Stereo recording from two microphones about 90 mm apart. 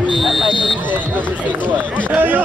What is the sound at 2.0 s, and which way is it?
Speech, 20° right (ahead or behind).